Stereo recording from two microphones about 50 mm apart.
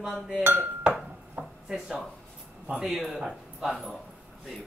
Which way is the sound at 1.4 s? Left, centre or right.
Right.